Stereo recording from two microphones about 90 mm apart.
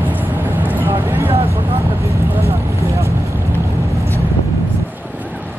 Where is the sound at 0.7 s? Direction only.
20° right (ahead or behind).